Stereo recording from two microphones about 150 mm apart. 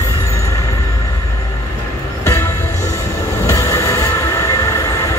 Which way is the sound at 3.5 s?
20° left (ahead or behind).